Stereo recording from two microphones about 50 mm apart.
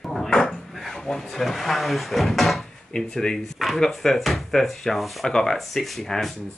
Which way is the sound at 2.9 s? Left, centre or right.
Centre.